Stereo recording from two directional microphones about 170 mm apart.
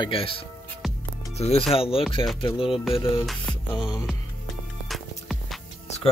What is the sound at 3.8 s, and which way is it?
Speech, 25° left (ahead or behind).